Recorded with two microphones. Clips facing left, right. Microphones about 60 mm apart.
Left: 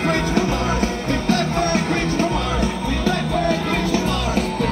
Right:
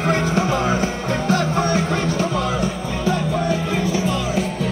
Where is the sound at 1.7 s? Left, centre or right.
Left.